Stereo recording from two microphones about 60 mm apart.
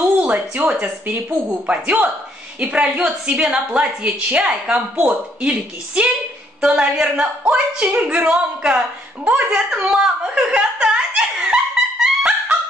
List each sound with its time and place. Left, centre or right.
0.2 s a woman's voice: right
9.7 s snicker: centre